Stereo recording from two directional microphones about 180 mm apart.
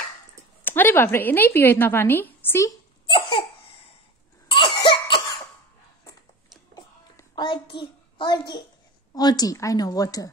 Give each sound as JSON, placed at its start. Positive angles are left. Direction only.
{"t": 0.7, "sound": "a woman's voice", "side_deg": 10}
{"t": 3.1, "sound": "laughter", "side_deg": 30}
{"t": 4.5, "sound": "cough", "side_deg": 30}
{"t": 6.7, "sound": "a sound", "side_deg": 20}
{"t": 7.7, "sound": "a child's voice", "side_deg": 25}